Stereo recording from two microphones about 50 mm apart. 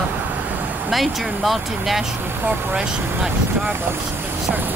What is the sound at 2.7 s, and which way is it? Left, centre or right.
Speech, centre.